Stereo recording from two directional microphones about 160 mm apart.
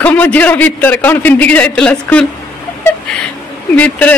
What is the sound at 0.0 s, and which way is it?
A man's voice, 10° left (ahead or behind).